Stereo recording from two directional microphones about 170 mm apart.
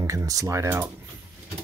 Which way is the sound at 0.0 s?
20° right (ahead or behind).